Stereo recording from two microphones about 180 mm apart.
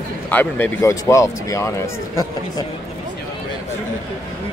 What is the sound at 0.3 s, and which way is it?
Speech, 10° left (ahead or behind).